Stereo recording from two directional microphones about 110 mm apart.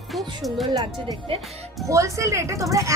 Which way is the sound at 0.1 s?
Centre (ahead or behind).